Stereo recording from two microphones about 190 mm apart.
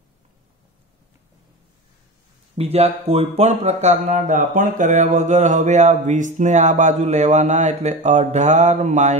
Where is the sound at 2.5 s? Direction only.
30° right (ahead or behind).